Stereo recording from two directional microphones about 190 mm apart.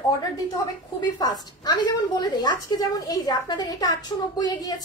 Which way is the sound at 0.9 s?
20° left (ahead or behind).